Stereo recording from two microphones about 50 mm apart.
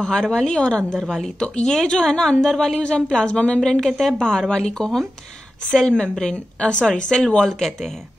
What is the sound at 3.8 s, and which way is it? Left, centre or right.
Speech, centre.